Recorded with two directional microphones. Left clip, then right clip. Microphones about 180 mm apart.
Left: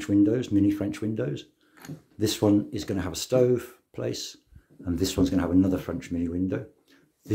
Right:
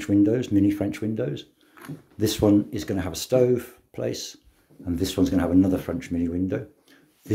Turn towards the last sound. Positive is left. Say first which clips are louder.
# right 3 dB
turn(degrees=0)  # may be behind; listen again after turning